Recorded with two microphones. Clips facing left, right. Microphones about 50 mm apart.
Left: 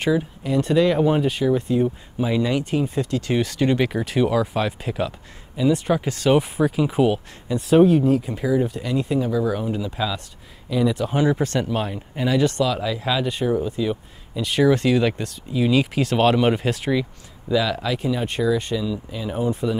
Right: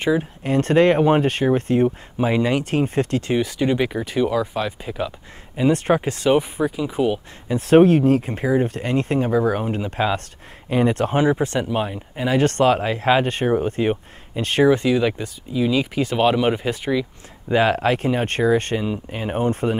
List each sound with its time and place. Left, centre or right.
0.4 s speech: right
2.6 s speech: right
3.3 s speech: centre
5.7 s speech: right
6.5 s speech: centre
7.7 s speech: right
11.3 s speech: centre
12.4 s speech: right
14.7 s speech: centre
17.5 s speech: right